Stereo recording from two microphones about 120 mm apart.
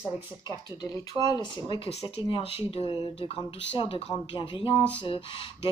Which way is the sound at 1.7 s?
50° left (ahead or behind).